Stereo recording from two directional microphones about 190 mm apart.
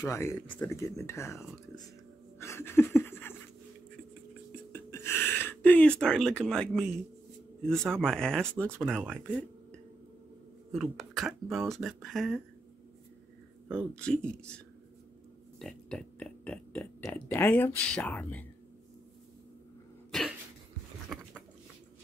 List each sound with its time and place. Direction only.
0.0 s speech: 15° left (ahead or behind)
2.3 s laughter: 15° left (ahead or behind)
4.7 s a sound: 10° left (ahead or behind)
7.7 s speech: 5° left (ahead or behind)
8.8 s speech: 10° right (ahead or behind)
10.7 s speech: centre (ahead or behind)
13.9 s speech: 5° left (ahead or behind)
15.6 s a sound: 5° left (ahead or behind)
17.0 s speech: 10° left (ahead or behind)
20.1 s cough: centre (ahead or behind)
21.1 s a sound: centre (ahead or behind)